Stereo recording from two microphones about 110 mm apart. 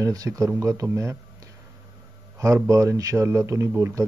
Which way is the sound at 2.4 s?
30° right (ahead or behind).